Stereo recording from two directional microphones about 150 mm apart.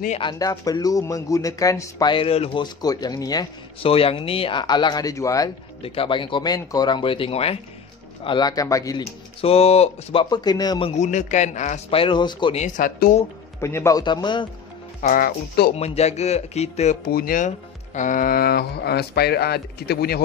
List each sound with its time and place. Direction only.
0.2 s speech: 25° left (ahead or behind)
3.8 s speech: 40° left (ahead or behind); by 5.5 s 20° left (ahead or behind)
5.8 s speech: 40° left (ahead or behind); by 9.0 s 20° left (ahead or behind)
9.0 s speech: 40° left (ahead or behind)
10.3 s speech: 25° left (ahead or behind)
11.0 s a man's voice: 55° left (ahead or behind)
11.9 s speech: 35° left (ahead or behind)
12.5 s speech: 60° left (ahead or behind)
13.6 s speech: 20° left (ahead or behind)
15.0 s speech: 65° left (ahead or behind); by 15.7 s 85° left
15.7 s a man's voice: 45° left (ahead or behind)
17.1 s speech: 75° left (ahead or behind)
17.5 s speech: 55° left (ahead or behind); by 20.2 s 90° left